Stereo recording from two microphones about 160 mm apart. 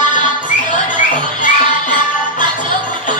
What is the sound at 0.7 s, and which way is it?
Music, 50° left (ahead or behind).